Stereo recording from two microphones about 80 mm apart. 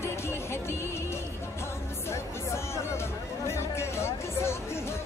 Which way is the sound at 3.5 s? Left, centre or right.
Left.